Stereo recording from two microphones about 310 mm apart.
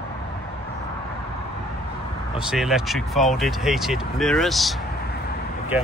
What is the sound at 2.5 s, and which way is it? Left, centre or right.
Speech, centre.